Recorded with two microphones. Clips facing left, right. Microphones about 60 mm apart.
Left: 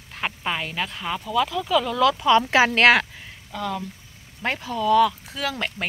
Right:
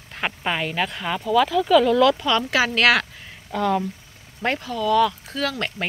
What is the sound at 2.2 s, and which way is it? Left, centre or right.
Speech, left.